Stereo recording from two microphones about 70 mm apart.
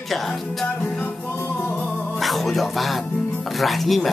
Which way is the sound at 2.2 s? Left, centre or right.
Centre.